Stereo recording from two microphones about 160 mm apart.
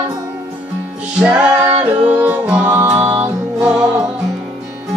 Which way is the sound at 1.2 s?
10° right (ahead or behind).